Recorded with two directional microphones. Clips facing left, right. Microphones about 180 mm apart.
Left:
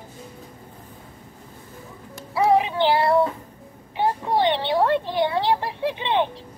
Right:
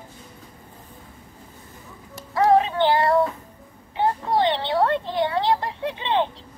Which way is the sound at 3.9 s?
15° left (ahead or behind).